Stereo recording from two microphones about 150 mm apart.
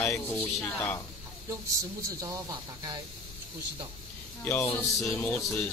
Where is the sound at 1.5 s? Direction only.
20° right (ahead or behind).